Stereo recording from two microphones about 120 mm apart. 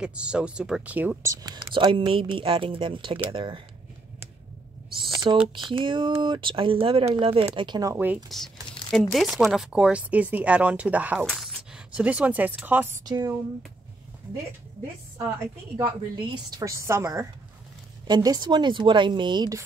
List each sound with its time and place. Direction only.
0.0 s speech: 10° right (ahead or behind)
1.2 s a woman's voice: 30° right (ahead or behind)
1.7 s speech: 45° right (ahead or behind)
5.1 s speech: 40° right (ahead or behind)
7.9 s speech: 15° right (ahead or behind)
9.1 s speech: centre (ahead or behind)
11.2 s a sound: centre (ahead or behind)
11.9 s speech: 10° right (ahead or behind)
13.0 s a woman's voice: 35° right (ahead or behind)
15.8 s a woman's voice: 40° right (ahead or behind); by 17.3 s 25° right (ahead or behind)
18.0 s a woman's voice: 35° right (ahead or behind)